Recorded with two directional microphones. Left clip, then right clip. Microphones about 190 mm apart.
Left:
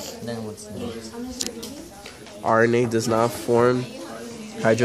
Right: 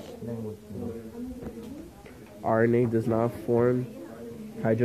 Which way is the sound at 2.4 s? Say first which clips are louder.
Left 5 dB; 15° left (ahead or behind).